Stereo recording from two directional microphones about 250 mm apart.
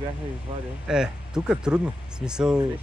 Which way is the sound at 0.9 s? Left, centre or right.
Centre.